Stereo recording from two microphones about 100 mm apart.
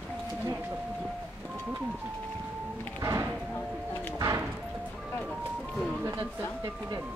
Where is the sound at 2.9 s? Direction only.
30° right (ahead or behind).